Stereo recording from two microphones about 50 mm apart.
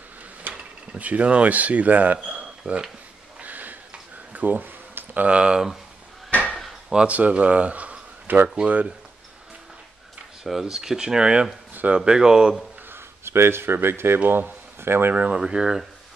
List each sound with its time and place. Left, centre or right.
0.5 s speech: right
2.6 s speech: right
3.3 s a sound: right
5.3 s speech: centre
6.3 s a sound: left
7.1 s speech: right
8.6 s speech: centre
10.4 s speech: centre
11.7 s a sound: right
12.0 s speech: centre
12.9 s speech: right
14.2 s speech: right
14.8 s speech: right
15.3 s speech: centre